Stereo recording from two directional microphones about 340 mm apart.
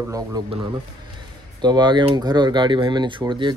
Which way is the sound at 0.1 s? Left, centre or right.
Centre.